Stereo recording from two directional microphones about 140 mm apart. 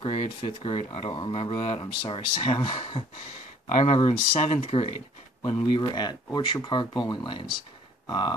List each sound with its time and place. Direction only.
0.0 s speech: 40° left (ahead or behind)
5.7 s speech: 30° left (ahead or behind)